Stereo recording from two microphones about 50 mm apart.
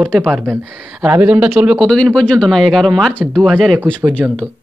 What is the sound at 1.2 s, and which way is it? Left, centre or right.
Speech, right.